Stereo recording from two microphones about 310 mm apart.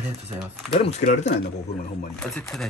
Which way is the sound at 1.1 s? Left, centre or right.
Left.